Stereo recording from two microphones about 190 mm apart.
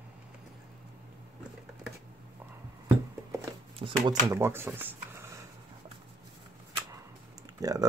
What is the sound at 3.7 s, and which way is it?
Speech, 25° right (ahead or behind).